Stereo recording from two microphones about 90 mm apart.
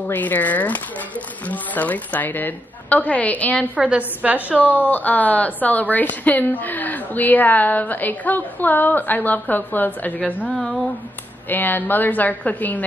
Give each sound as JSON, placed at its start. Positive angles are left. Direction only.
{"t": 0.0, "sound": "a woman's voice", "side_deg": 20}
{"t": 3.7, "sound": "a woman's voice", "side_deg": -15}
{"t": 4.7, "sound": "speech", "side_deg": 20}
{"t": 10.5, "sound": "a sound", "side_deg": 5}
{"t": 11.4, "sound": "speech", "side_deg": 20}